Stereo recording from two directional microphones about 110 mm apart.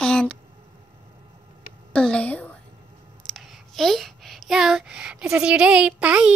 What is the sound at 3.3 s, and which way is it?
Speech, centre (ahead or behind).